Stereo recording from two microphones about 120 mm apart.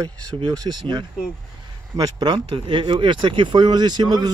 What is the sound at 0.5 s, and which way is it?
Speech, 40° right (ahead or behind).